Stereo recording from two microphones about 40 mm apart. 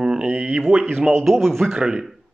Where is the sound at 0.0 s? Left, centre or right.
Centre.